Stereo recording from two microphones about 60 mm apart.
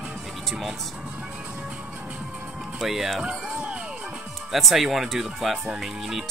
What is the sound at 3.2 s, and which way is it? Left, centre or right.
Music, centre.